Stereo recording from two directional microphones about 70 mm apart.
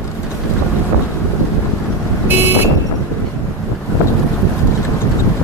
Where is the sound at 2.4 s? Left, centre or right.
Right.